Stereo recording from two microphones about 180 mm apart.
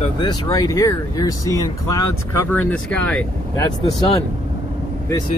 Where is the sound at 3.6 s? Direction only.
20° left (ahead or behind).